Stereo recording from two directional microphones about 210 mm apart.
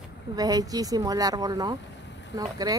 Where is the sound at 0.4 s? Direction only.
15° right (ahead or behind).